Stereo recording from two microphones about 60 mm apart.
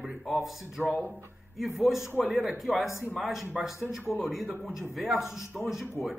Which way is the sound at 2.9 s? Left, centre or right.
Left.